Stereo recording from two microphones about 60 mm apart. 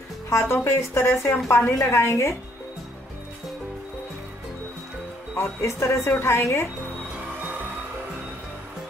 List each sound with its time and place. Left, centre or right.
0.3 s speech: left
5.4 s speech: left